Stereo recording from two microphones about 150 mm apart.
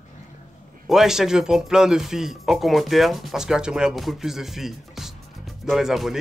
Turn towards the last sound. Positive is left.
turn(degrees=0)  # may be behind; listen again after turning